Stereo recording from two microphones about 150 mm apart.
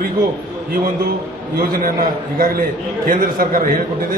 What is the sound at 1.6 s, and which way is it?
A man's voice, 80° right.